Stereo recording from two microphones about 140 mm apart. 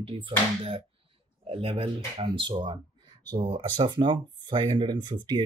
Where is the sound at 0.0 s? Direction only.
40° right (ahead or behind).